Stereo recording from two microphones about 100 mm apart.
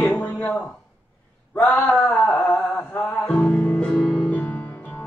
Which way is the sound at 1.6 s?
20° left (ahead or behind).